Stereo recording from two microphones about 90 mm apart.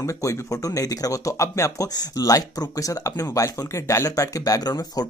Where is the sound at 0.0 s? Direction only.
35° left (ahead or behind).